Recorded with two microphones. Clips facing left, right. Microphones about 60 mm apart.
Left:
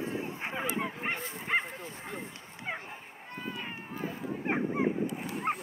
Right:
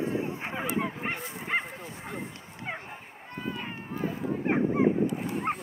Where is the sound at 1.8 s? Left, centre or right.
Centre.